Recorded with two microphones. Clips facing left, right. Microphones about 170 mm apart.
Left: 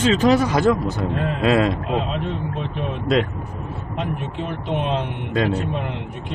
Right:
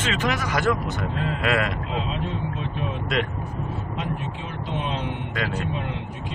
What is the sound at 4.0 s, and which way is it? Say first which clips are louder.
Speech: left 7 dB; 65° left (ahead or behind).